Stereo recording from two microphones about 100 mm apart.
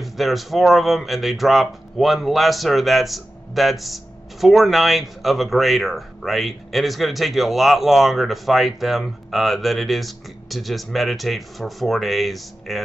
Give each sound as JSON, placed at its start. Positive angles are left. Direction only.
{"t": 0.0, "sound": "speech", "side_deg": 0}